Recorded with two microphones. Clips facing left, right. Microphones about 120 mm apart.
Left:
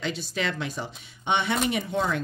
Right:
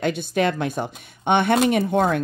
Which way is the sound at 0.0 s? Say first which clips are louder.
Right 8 dB; 55° right (ahead or behind).